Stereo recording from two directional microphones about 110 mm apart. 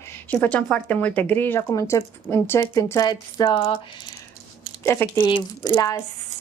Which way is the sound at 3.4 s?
45° left (ahead or behind).